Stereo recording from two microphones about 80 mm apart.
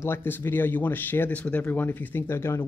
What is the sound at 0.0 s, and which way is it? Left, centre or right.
Speech, left.